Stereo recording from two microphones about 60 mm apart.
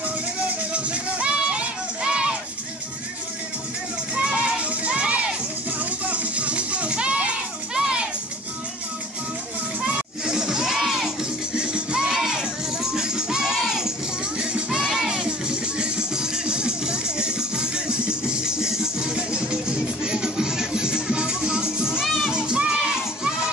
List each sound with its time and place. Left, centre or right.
0.5 s music: centre
4.1 s music: centre
9.8 s children playing: centre
10.8 s music: centre
11.5 s music: centre
22.0 s music: centre
22.3 s crowd: centre